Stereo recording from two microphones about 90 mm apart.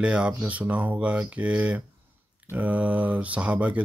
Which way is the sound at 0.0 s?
10° right (ahead or behind).